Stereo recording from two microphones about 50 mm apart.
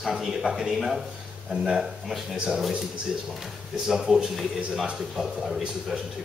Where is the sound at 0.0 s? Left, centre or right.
Centre.